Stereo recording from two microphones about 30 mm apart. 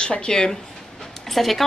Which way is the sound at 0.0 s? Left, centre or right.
Left.